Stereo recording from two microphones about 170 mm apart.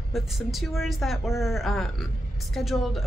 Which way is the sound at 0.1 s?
Centre (ahead or behind).